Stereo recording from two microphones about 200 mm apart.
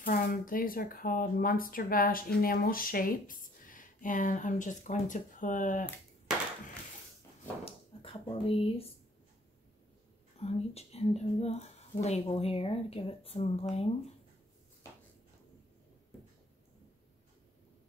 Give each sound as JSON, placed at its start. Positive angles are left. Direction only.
{"t": 0.0, "sound": "speech", "side_deg": 45}
{"t": 7.6, "sound": "speech", "side_deg": 30}
{"t": 10.4, "sound": "speech", "side_deg": 30}